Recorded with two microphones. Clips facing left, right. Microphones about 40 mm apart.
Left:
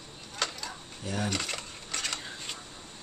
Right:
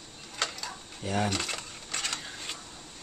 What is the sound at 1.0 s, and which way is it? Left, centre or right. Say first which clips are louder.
Speech: right 4 dB; right.